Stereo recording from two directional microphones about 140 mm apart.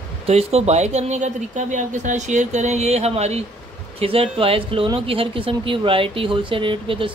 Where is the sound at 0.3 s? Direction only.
50° right (ahead or behind).